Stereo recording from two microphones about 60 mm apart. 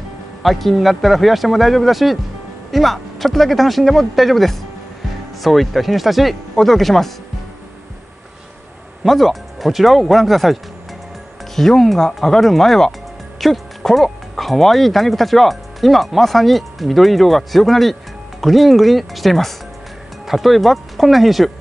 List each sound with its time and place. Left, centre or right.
0.4 s speech: centre
9.0 s speech: centre